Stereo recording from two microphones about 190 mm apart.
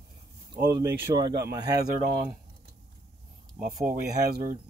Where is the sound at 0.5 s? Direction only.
15° right (ahead or behind).